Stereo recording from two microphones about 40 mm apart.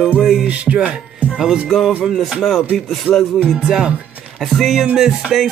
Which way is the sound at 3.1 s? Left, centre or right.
Left.